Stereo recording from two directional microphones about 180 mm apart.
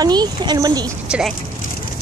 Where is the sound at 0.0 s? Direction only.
20° right (ahead or behind).